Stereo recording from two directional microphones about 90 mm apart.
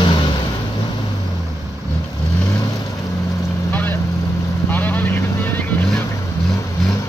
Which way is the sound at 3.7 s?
20° left (ahead or behind).